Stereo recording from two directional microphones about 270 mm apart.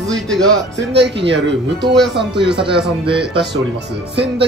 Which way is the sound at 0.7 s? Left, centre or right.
Right.